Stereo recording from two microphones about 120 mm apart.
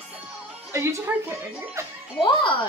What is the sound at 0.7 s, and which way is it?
Speech, 20° right (ahead or behind).